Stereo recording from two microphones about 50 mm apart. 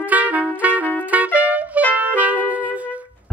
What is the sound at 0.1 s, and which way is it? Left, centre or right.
Music, right.